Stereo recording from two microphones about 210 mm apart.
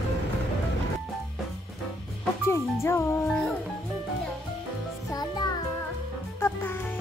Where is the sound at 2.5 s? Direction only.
10° left (ahead or behind).